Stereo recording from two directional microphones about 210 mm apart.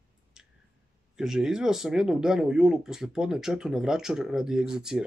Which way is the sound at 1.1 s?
Centre (ahead or behind).